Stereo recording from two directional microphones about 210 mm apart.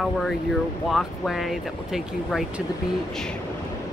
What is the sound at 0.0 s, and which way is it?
Speech, centre (ahead or behind).